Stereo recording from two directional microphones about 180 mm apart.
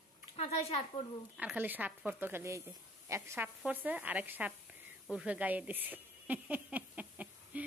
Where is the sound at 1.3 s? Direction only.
10° right (ahead or behind).